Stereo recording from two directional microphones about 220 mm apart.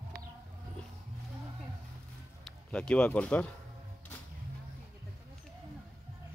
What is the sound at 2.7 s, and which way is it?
Speech, 5° left (ahead or behind).